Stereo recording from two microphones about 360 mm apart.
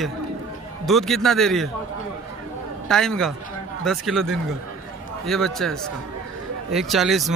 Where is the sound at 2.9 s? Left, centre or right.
Centre.